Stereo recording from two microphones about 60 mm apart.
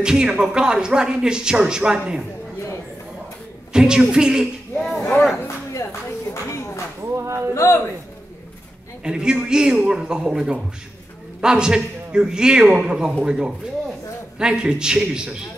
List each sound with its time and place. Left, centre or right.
0.0 s speech: centre
3.7 s speech: centre
5.7 s a sound: left
7.0 s a sound: right
7.5 s a man's voice: left
9.0 s speech: centre